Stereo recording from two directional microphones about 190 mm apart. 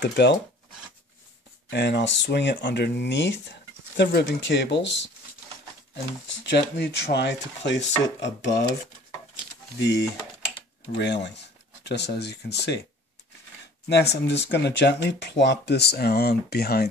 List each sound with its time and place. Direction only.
0.0 s speech: 65° left (ahead or behind)
1.7 s speech: 65° left (ahead or behind)
6.2 s speech: 70° left (ahead or behind)
9.8 s speech: 65° left (ahead or behind)
13.8 s speech: 60° left (ahead or behind)